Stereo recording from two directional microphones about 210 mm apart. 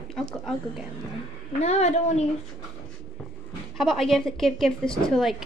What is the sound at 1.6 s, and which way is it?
Speech, 30° left (ahead or behind).